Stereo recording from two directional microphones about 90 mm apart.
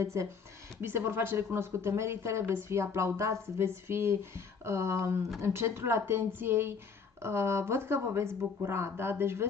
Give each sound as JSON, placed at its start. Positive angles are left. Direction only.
{"t": 0.0, "sound": "speech", "side_deg": -35}